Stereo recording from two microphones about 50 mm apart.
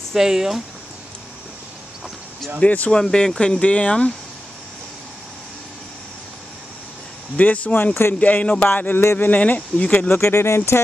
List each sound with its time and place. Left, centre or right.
0.1 s speech: centre
2.6 s speech: left
2.9 s speech: centre
7.3 s speech: left
7.9 s speech: left
8.2 s speech: left
9.3 s speech: left
9.8 s speech: centre
10.2 s speech: left